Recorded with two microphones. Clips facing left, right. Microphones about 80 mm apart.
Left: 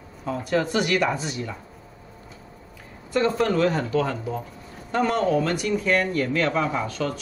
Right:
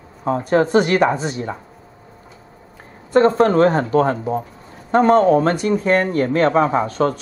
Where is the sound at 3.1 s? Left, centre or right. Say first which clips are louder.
Right 8 dB; right.